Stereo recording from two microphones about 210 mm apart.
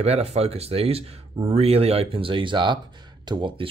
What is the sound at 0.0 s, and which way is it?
Speech, 30° right (ahead or behind).